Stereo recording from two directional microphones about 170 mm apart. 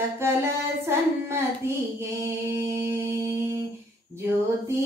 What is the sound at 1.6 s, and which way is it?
Music, 15° right (ahead or behind).